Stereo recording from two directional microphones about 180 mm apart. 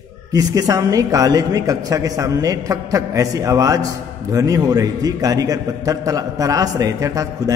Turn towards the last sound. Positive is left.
turn(degrees=-20)  # may be behind; listen again after turning